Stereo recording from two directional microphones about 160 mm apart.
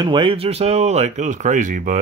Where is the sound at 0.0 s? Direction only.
30° right (ahead or behind).